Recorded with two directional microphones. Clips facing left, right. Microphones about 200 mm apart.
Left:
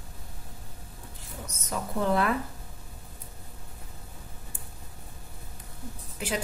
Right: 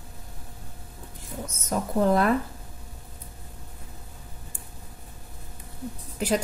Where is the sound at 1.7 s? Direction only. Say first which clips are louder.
Right 5 dB; 40° right (ahead or behind).